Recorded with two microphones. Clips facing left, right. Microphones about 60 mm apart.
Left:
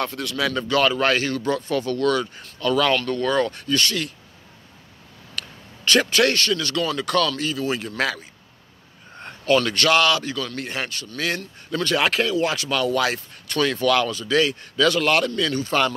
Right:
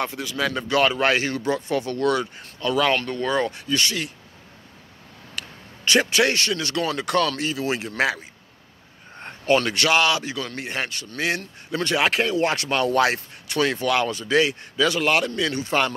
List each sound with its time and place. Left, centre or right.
0.0 s a man's voice: centre
0.6 s a man's voice: right
5.9 s a man's voice: centre; by 13.2 s right
13.5 s speech: centre
14.8 s a man's voice: centre